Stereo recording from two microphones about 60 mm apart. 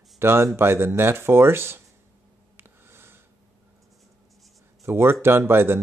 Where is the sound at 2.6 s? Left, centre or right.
Right.